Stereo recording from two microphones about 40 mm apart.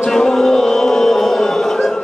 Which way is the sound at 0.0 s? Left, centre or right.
Centre.